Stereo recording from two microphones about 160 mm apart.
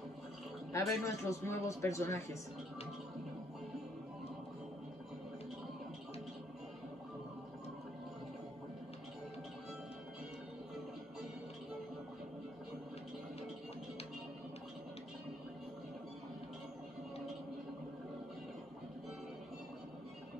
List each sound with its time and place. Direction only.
0.7 s a man's voice: 20° left (ahead or behind)